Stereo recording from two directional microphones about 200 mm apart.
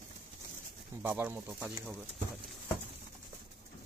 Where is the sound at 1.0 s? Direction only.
10° right (ahead or behind).